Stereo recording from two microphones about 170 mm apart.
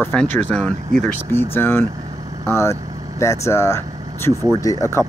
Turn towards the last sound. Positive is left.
turn(degrees=20)  # may be behind; listen again after turning